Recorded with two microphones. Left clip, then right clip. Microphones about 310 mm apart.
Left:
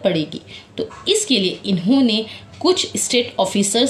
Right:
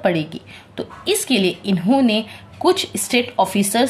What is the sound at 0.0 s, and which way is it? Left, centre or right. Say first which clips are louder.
A woman's voice: even; right.